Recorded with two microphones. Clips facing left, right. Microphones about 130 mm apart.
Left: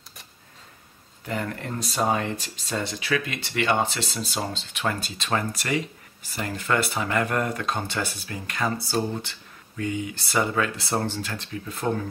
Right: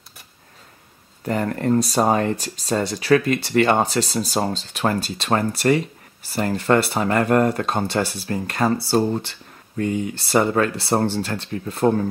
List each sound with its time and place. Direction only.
1.2 s speech: 45° right (ahead or behind)